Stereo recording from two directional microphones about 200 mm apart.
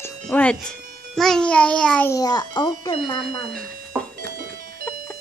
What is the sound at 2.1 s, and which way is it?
Speech, 20° left (ahead or behind).